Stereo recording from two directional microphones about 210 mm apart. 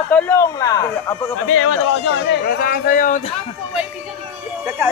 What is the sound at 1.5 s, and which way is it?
Speech, 70° left (ahead or behind).